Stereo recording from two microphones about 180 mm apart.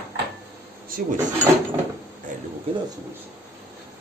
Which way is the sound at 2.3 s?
45° right (ahead or behind).